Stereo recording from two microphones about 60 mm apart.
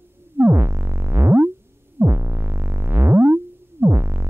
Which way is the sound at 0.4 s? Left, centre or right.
Right.